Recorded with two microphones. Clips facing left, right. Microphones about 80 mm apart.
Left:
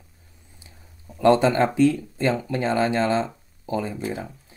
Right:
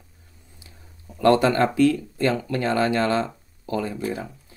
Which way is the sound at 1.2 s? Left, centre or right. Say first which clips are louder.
Even; left.